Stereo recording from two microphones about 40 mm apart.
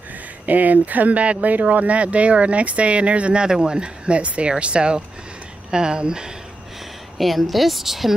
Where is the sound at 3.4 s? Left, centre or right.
Right.